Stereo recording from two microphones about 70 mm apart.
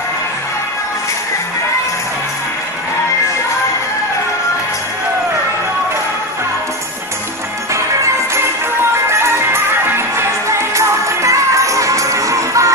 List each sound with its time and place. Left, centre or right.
9.1 s music: right
10.8 s music: right